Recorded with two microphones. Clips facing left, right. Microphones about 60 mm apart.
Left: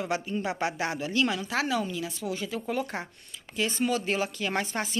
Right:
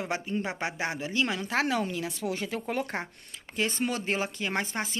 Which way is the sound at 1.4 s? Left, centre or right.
Right.